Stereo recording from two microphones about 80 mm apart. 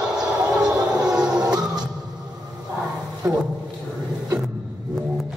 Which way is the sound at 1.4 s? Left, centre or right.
Right.